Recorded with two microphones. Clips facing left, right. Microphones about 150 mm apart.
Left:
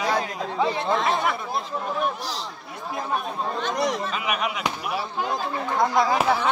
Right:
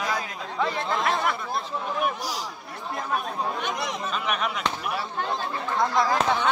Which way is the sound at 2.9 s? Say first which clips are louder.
Left 1 dB; centre (ahead or behind).